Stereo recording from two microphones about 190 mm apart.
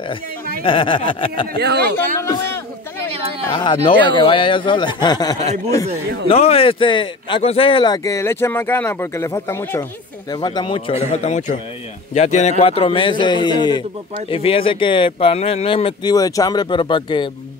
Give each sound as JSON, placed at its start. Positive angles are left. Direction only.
{"t": 0.7, "sound": "a man's voice", "side_deg": 25}
{"t": 1.6, "sound": "speech", "side_deg": -60}
{"t": 2.0, "sound": "a sound", "side_deg": 15}
{"t": 3.5, "sound": "a man's voice", "side_deg": 25}
{"t": 6.2, "sound": "a man's voice", "side_deg": 30}